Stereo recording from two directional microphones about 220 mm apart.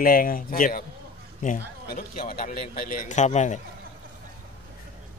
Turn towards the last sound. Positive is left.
turn(degrees=30)  # may be behind; listen again after turning